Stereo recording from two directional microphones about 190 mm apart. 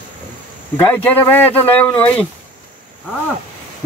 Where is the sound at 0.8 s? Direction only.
10° left (ahead or behind).